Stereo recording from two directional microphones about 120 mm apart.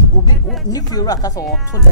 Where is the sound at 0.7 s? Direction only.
30° left (ahead or behind).